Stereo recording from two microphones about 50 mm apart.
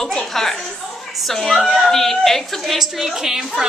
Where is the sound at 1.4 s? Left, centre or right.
Centre.